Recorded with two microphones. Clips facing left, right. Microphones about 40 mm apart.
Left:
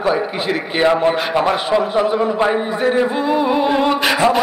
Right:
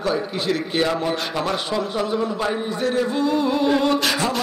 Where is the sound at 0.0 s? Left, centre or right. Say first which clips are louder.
Left 5 dB; left.